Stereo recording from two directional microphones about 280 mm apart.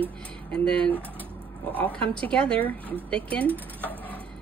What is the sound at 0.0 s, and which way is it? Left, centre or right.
Speech, centre.